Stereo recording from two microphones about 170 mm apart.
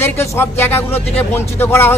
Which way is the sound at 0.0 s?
15° left (ahead or behind).